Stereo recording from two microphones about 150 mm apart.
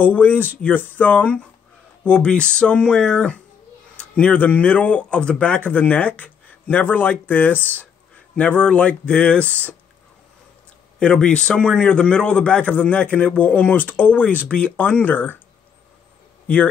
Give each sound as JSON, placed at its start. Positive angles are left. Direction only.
{"t": 0.0, "sound": "a man's voice", "side_deg": 10}
{"t": 11.0, "sound": "a man's voice", "side_deg": 5}